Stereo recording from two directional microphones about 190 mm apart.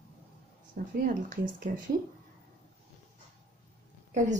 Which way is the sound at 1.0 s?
45° right (ahead or behind).